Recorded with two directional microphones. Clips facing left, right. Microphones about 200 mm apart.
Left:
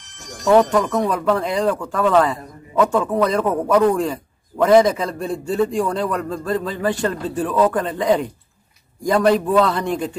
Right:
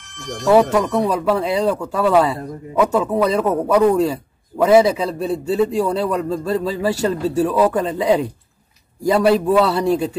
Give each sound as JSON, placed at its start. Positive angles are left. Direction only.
{"t": 0.0, "sound": "speech", "side_deg": -60}
{"t": 0.5, "sound": "a man's voice", "side_deg": -10}